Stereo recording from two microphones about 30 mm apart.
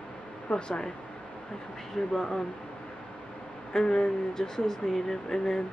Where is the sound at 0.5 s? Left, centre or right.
Left.